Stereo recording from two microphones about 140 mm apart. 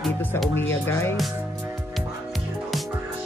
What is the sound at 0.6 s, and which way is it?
Speech, 15° left (ahead or behind).